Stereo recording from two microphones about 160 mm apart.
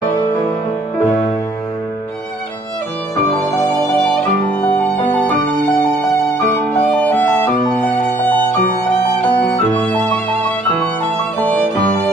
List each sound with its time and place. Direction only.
4.6 s violin: 10° left (ahead or behind)
6.7 s music: 10° left (ahead or behind)